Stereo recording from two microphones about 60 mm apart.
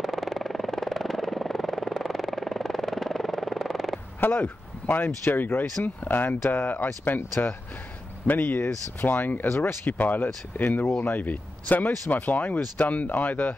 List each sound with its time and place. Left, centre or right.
0.0 s helicopter: centre
4.2 s speech: left
8.3 s speech: left
9.0 s speech: left
9.8 s speech: left